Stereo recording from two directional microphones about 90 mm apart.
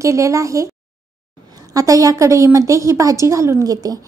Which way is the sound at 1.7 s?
40° right (ahead or behind).